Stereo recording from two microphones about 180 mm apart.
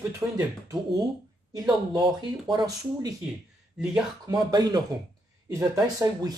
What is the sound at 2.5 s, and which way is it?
Speech, 20° right (ahead or behind).